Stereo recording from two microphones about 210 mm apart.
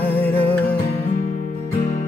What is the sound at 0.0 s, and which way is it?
Music, 10° left (ahead or behind).